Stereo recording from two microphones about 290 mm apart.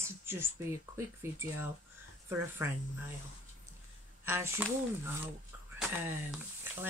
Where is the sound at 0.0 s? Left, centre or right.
Centre.